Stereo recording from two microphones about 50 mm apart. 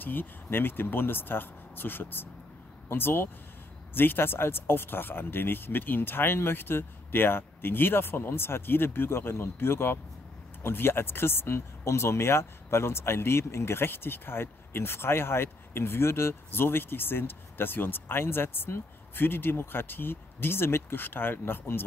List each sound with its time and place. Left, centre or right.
0.0 s speech: left